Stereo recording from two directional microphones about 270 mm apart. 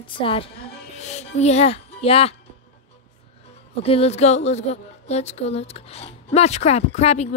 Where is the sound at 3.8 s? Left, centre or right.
Left.